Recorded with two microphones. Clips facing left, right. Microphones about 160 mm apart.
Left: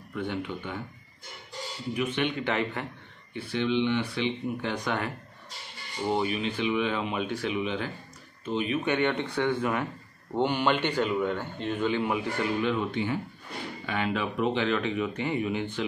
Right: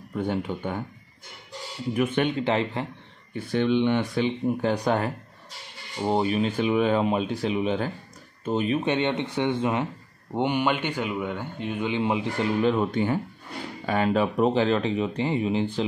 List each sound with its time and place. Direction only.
0.1 s speech: 40° right (ahead or behind)
2.0 s speech: 50° right (ahead or behind)
2.3 s speech: 30° right (ahead or behind)
3.3 s speech: 45° right (ahead or behind); by 12.7 s 30° right (ahead or behind)
12.7 s speech: 45° right (ahead or behind)